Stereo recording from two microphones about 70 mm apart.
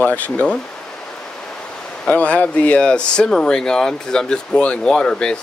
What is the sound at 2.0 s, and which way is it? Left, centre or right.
Speech, left.